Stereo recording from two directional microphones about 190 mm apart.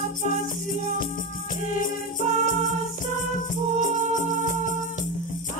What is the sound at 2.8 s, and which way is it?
Music, 45° left (ahead or behind).